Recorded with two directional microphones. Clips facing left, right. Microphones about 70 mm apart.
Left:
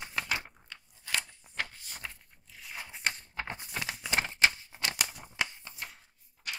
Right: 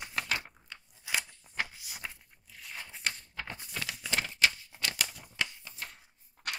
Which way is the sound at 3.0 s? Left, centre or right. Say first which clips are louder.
Left 3 dB; left.